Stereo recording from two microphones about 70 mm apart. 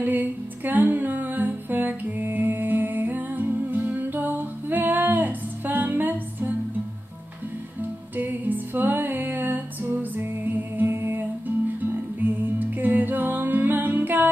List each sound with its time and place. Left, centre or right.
0.0 s music: right
8.2 s music: right